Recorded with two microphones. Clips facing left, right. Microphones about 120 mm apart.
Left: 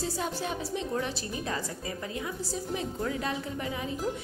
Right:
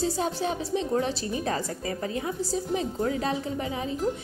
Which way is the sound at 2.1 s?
30° right (ahead or behind).